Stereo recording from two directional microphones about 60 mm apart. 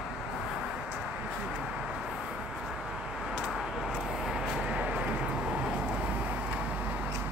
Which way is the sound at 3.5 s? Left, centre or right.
Centre.